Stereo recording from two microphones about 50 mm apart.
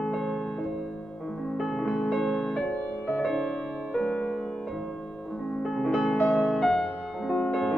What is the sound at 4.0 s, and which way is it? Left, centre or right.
Music, left.